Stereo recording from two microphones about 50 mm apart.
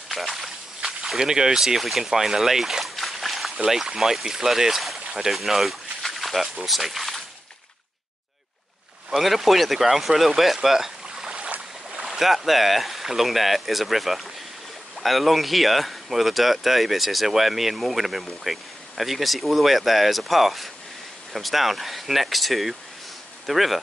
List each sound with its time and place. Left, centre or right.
0.1 s speech: centre
9.1 s speech: centre
11.1 s a sound: centre
12.0 s speech: centre